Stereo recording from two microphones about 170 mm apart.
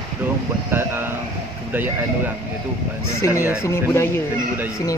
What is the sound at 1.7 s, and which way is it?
Speech, 10° right (ahead or behind).